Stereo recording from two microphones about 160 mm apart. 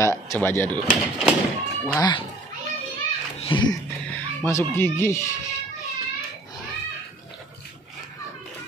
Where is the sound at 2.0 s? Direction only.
30° left (ahead or behind).